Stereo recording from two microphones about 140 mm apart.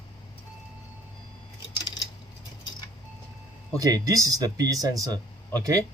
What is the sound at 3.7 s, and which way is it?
Speech, 25° right (ahead or behind).